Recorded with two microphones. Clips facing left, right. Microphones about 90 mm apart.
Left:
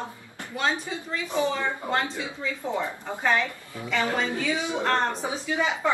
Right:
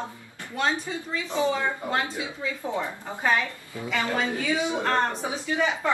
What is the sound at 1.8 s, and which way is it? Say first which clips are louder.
Speech: left 1 dB; 25° left (ahead or behind).